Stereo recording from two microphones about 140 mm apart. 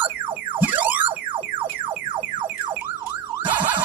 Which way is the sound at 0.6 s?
10° right (ahead or behind).